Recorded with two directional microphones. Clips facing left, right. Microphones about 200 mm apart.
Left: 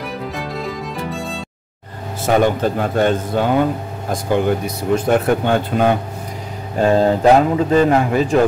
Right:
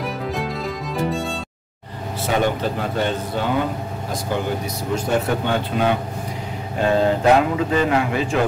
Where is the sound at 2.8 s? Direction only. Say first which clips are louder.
Left 6 dB; 50° left (ahead or behind).